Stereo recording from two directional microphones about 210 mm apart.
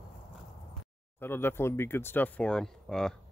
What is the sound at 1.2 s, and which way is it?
Speech, 10° left (ahead or behind).